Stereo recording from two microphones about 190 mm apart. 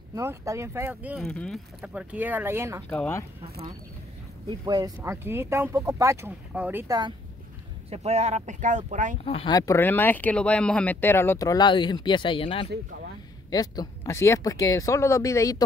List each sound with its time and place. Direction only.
0.1 s speech: 15° right (ahead or behind)
1.2 s speech: 5° left (ahead or behind); by 2.8 s 15° right (ahead or behind)
2.9 s speech: 10° left (ahead or behind)
4.5 s speech: 20° right (ahead or behind)
7.9 s speech: 35° right (ahead or behind)
9.2 s speech: 30° left (ahead or behind)